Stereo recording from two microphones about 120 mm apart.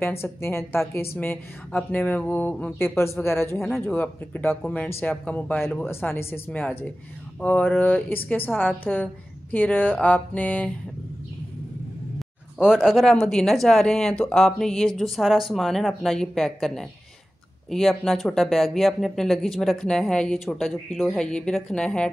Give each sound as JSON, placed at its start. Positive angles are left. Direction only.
{"t": 0.0, "sound": "a woman's voice", "side_deg": 20}
{"t": 3.5, "sound": "speech", "side_deg": 0}
{"t": 3.8, "sound": "a woman's voice", "side_deg": 15}
{"t": 12.2, "sound": "speech", "side_deg": 0}